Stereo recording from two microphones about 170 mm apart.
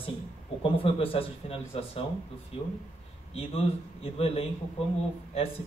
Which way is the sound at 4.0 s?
35° left (ahead or behind).